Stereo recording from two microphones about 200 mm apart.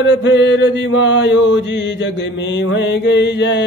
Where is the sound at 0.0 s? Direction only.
65° left (ahead or behind).